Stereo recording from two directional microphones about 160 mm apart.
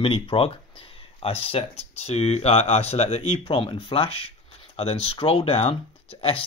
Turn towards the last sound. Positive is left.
turn(degrees=35)  # may be behind; listen again after turning